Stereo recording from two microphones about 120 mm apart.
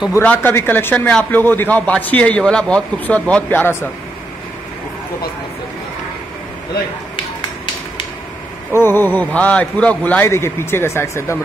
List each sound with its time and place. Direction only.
0.2 s a man's voice: 15° left (ahead or behind)
8.7 s a man's voice: 20° left (ahead or behind)